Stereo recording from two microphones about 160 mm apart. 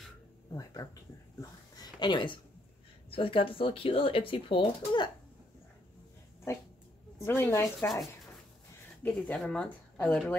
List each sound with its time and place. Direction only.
0.8 s speech: 20° left (ahead or behind)
6.5 s speech: 15° left (ahead or behind)
9.0 s speech: 5° left (ahead or behind)